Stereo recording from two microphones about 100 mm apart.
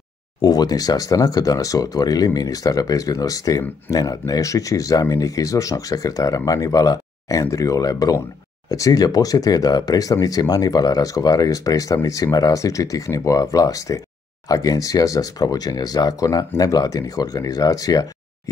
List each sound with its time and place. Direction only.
0.4 s speech: 40° left (ahead or behind)